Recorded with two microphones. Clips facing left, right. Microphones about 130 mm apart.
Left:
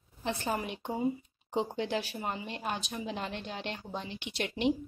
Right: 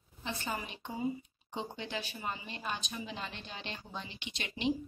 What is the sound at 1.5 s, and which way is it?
Speech, 70° left (ahead or behind).